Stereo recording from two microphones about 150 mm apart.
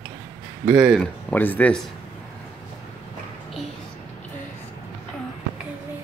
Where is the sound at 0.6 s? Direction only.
15° right (ahead or behind).